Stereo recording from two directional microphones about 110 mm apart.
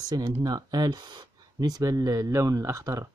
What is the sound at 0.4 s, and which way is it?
Speech, 35° right (ahead or behind).